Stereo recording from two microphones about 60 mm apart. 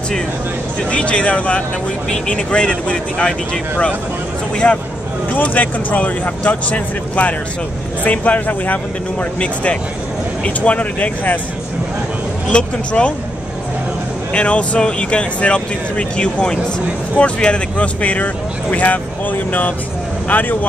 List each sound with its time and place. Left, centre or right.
0.8 s speech: centre
12.4 s speech: centre
14.3 s speech: centre